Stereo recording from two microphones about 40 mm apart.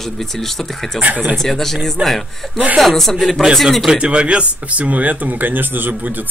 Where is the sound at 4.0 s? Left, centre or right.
Right.